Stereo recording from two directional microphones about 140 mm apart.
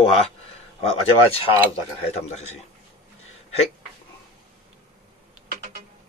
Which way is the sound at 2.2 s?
50° left (ahead or behind).